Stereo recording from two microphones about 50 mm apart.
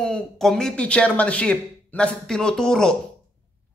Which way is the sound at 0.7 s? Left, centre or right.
Left.